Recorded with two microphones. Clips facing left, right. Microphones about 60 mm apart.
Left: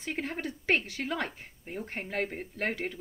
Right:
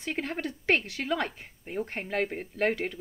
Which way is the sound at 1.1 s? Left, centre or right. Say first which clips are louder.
Right 7 dB; right.